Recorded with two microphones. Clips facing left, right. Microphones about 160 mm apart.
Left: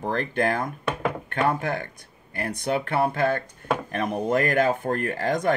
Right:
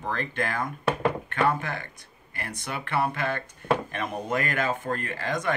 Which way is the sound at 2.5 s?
45° left (ahead or behind).